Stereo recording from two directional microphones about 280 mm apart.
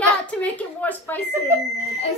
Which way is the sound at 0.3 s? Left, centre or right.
Centre.